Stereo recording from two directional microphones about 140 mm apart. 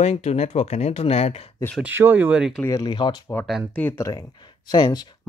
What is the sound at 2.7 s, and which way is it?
Speech, 30° left (ahead or behind).